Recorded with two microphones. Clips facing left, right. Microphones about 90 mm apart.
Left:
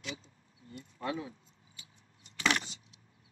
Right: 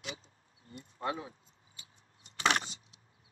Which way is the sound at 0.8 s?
30° right (ahead or behind).